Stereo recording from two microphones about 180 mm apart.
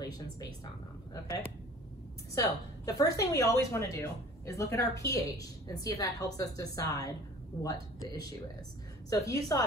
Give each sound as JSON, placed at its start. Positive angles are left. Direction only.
{"t": 0.0, "sound": "speech", "side_deg": 20}
{"t": 2.3, "sound": "a woman's voice", "side_deg": 20}